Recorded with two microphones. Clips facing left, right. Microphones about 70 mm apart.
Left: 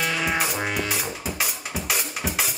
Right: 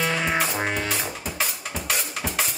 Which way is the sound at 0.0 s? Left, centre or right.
Right.